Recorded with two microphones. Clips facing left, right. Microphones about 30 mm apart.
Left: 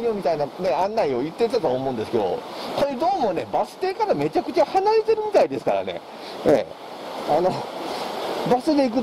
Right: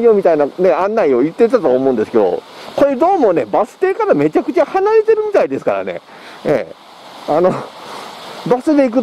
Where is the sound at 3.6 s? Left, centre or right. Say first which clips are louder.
Right 9 dB; right.